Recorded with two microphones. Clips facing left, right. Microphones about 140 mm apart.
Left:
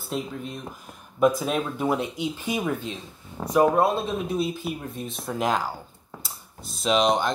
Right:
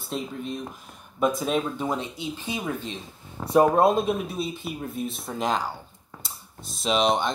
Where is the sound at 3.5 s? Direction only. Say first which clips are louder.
Right 1 dB; 30° right (ahead or behind).